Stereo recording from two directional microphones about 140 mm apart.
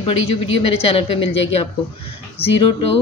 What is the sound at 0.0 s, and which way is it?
A woman's voice, 45° left (ahead or behind).